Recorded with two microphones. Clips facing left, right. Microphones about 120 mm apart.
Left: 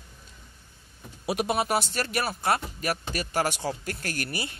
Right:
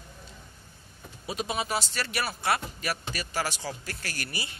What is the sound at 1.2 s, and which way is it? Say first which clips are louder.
Speech: left 5 dB; 65° left (ahead or behind).